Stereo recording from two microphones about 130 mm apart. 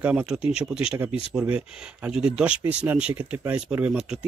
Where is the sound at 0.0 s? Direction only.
10° right (ahead or behind).